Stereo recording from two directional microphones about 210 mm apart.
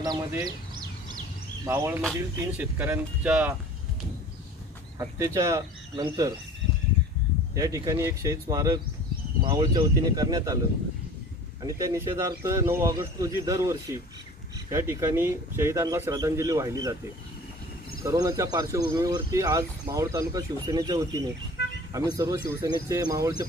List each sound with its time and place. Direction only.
0.0 s speech: 15° right (ahead or behind)
1.7 s speech: 10° right (ahead or behind)
4.9 s speech: 15° right (ahead or behind)
7.5 s speech: 15° right (ahead or behind)
11.6 s speech: 15° right (ahead or behind)
18.0 s speech: 15° right (ahead or behind)
21.6 s vehicle: 50° left (ahead or behind)
21.9 s speech: 15° right (ahead or behind)